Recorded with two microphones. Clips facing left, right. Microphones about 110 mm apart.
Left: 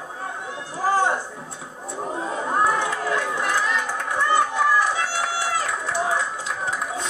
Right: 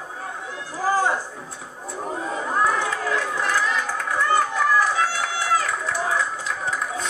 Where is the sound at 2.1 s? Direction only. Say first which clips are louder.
Left 1 dB; 30° left (ahead or behind).